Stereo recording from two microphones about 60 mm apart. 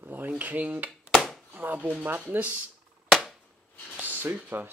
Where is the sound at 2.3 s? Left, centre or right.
Right.